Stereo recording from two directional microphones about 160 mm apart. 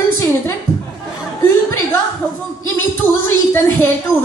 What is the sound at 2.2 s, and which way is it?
A woman's voice, 15° left (ahead or behind).